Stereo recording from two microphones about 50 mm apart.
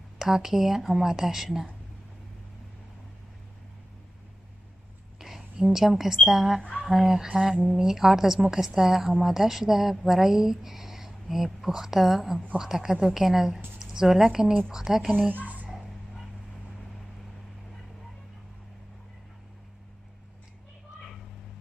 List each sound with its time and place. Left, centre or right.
0.2 s a woman's voice: centre
5.2 s a woman's voice: centre
15.2 s a sound: right